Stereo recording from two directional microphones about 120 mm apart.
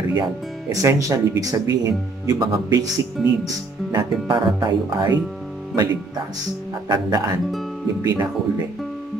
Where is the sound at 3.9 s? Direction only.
35° right (ahead or behind).